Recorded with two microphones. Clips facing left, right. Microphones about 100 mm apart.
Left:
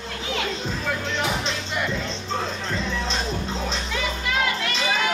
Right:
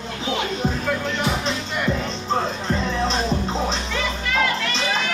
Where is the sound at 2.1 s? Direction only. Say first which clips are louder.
Right 5 dB; 35° right (ahead or behind).